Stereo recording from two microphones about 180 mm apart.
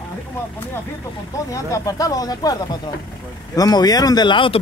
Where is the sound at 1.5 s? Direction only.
20° left (ahead or behind).